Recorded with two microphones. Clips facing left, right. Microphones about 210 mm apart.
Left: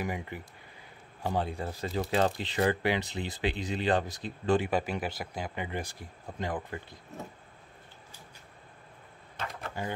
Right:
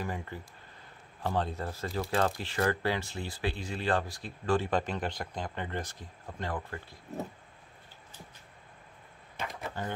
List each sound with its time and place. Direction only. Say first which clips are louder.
0.0 s speech: left 2 dB; 15° left (ahead or behind)
4.6 s speech: left 1 dB; 10° left (ahead or behind)